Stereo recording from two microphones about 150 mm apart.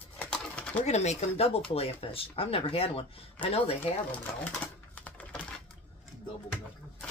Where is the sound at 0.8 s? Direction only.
50° left (ahead or behind).